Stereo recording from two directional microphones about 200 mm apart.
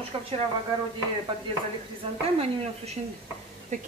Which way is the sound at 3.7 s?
35° right (ahead or behind).